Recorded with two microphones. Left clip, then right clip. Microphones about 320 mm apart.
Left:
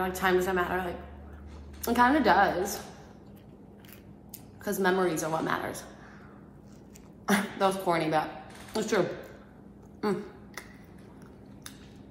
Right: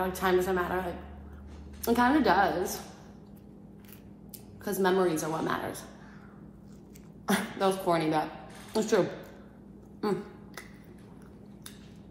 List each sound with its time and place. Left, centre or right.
0.0 s a woman's voice: centre
4.6 s a woman's voice: centre
7.2 s a woman's voice: centre
9.9 s a sound: centre